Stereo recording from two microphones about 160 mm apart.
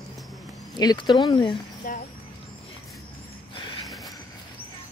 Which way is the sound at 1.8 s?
55° left (ahead or behind).